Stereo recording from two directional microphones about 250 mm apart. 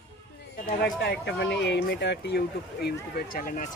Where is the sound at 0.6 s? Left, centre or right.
Left.